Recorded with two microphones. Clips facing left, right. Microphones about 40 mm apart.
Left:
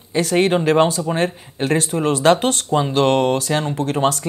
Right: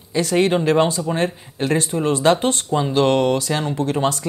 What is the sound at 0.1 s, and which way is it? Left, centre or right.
Speech, left.